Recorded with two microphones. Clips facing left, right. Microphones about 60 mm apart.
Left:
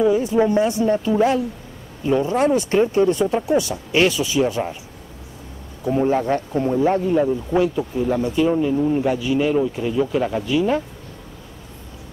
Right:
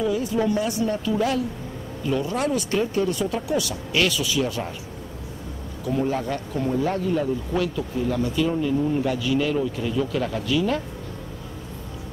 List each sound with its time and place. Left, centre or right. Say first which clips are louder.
0.0 s speech: left 6 dB; left
5.9 s speech: left 6 dB; left